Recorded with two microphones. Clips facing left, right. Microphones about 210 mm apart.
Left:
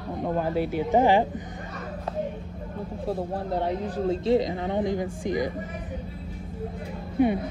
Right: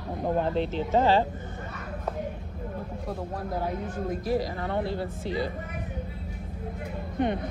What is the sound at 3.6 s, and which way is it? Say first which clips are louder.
A woman's voice: left 4 dB; 30° left (ahead or behind).